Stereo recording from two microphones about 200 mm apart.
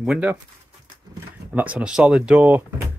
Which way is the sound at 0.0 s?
5° right (ahead or behind).